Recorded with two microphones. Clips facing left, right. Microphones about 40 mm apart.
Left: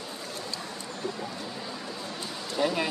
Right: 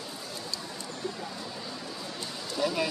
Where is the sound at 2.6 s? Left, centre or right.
Left.